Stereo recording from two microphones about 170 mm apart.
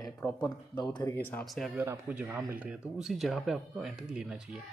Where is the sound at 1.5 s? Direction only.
Centre (ahead or behind).